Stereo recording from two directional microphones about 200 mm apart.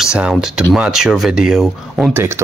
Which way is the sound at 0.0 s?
5° right (ahead or behind).